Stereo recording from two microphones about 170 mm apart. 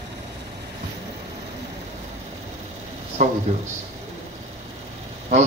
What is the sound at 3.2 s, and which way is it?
Speech, 45° right (ahead or behind).